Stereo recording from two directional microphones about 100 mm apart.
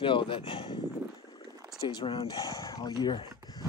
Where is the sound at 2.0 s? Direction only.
65° left (ahead or behind).